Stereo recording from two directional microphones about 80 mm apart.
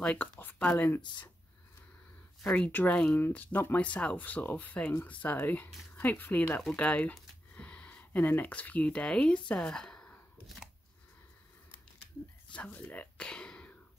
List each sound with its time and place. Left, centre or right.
0.0 s speech: centre
2.4 s speech: centre
2.7 s speech: left; by 10.5 s centre
12.5 s speech: centre